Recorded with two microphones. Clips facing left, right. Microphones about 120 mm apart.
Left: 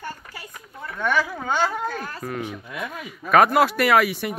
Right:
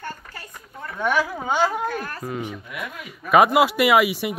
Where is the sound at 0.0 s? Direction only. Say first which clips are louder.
Even; 10° left (ahead or behind).